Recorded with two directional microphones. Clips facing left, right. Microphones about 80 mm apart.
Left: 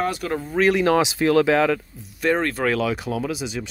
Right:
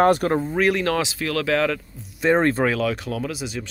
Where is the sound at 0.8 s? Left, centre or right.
Centre.